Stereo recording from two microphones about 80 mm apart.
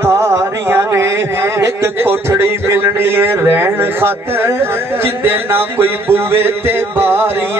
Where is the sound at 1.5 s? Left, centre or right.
Right.